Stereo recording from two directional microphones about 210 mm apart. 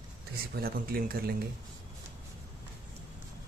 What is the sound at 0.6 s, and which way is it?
Speech, 45° right (ahead or behind).